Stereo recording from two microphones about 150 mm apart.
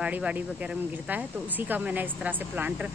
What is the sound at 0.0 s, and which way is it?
Speech, 10° right (ahead or behind).